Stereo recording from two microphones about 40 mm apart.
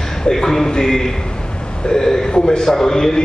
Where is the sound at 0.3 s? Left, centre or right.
Centre.